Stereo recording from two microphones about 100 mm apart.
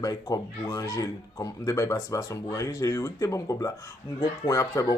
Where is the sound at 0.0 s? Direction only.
35° left (ahead or behind).